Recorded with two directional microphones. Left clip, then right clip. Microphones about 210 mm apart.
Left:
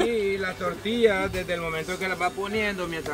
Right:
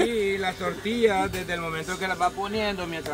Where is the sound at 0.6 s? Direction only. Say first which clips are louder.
Left 2 dB; 25° right (ahead or behind).